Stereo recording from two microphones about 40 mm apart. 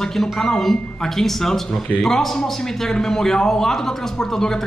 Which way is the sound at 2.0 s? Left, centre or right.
Centre.